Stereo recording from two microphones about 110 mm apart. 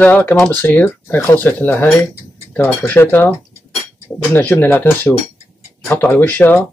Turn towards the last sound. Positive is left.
turn(degrees=15)  # may be behind; listen again after turning